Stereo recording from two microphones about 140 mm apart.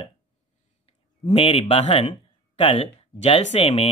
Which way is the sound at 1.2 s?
45° left (ahead or behind).